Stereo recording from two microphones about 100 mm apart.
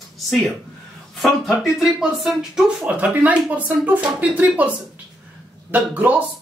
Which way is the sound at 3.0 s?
15° right (ahead or behind).